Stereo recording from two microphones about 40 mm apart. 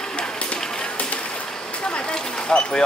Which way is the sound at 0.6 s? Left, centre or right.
Left.